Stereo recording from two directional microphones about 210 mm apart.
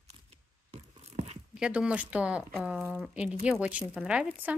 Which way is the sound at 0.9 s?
30° right (ahead or behind).